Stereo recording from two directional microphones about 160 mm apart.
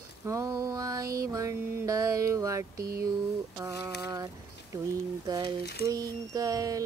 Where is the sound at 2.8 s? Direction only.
70° right (ahead or behind).